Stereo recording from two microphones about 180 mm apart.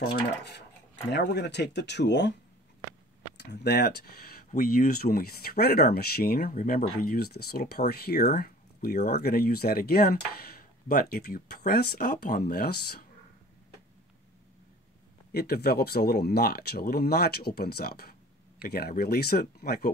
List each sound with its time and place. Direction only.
0.1 s speech: 70° left (ahead or behind)
3.6 s speech: 65° left (ahead or behind)
15.3 s speech: 60° left (ahead or behind)